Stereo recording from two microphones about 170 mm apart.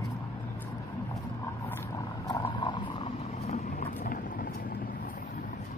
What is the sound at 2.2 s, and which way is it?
Vehicle, 25° left (ahead or behind).